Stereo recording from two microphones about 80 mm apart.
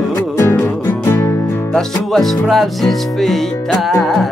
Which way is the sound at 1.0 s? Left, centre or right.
Left.